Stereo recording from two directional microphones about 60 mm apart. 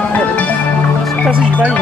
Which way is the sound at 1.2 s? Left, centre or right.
Left.